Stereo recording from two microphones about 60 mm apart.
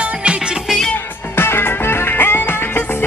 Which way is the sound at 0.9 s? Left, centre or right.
Left.